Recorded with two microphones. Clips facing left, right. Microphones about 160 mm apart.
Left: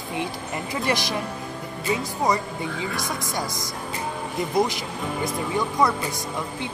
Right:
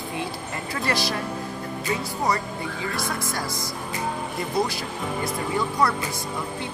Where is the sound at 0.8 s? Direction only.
20° left (ahead or behind).